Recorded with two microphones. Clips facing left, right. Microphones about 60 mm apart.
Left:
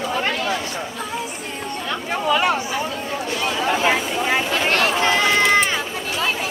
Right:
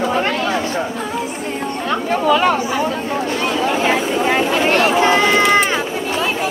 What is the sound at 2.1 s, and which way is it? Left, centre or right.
Speech, centre.